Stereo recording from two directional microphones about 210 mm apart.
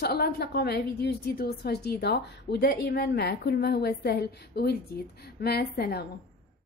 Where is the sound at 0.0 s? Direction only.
50° left (ahead or behind).